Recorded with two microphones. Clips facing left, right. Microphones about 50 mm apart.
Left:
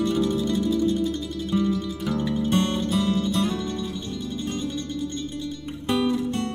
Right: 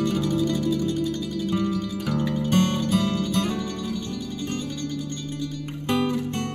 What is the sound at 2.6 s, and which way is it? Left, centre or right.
Music, right.